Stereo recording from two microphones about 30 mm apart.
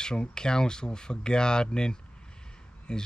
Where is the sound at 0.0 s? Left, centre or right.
Left.